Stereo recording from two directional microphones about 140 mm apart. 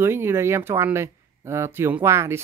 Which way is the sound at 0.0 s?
15° right (ahead or behind).